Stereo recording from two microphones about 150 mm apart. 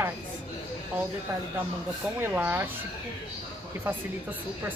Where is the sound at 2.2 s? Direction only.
15° right (ahead or behind).